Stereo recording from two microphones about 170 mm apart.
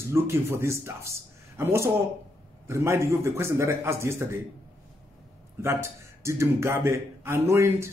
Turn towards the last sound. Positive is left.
turn(degrees=-15)  # may be behind; listen again after turning